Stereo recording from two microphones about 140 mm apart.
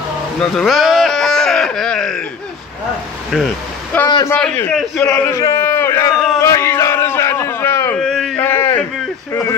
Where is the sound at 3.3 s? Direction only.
Centre (ahead or behind).